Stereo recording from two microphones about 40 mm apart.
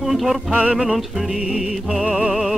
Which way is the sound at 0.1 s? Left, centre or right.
Centre.